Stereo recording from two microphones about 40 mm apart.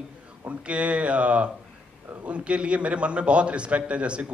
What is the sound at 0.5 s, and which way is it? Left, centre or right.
A man's voice, right.